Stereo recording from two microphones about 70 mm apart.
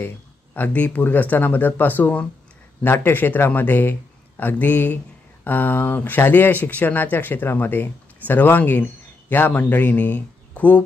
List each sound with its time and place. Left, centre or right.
0.6 s speech: left